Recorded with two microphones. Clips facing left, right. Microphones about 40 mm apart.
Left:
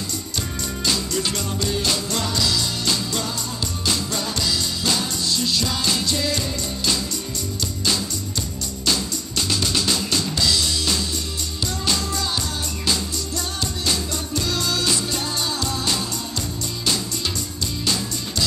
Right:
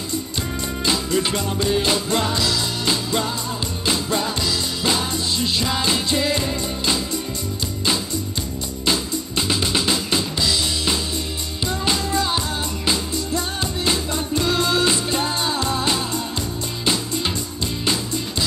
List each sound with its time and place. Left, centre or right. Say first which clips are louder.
0.8 s music: right 3 dB; right
9.5 s music: right 2 dB; right